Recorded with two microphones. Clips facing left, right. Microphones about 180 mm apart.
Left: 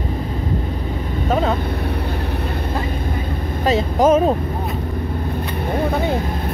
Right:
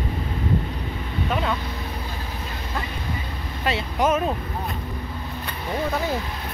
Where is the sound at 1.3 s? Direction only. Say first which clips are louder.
Left 7 dB; 40° left (ahead or behind).